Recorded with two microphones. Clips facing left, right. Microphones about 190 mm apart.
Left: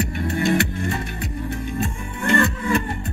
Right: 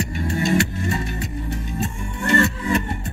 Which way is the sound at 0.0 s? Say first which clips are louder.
Left 1 dB; 60° left (ahead or behind).